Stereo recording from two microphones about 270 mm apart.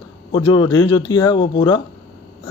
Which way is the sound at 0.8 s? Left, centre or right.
Centre.